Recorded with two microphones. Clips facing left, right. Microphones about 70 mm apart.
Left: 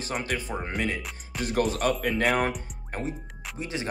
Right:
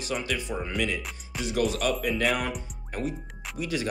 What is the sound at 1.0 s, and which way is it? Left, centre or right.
Speech, centre.